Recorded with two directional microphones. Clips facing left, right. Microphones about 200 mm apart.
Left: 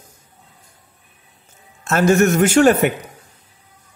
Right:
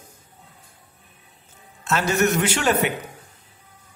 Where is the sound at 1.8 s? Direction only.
45° left (ahead or behind).